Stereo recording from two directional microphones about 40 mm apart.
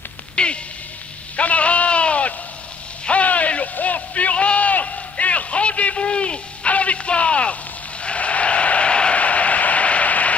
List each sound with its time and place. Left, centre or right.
0.4 s music: left
1.3 s sheep: left
3.1 s a sound: left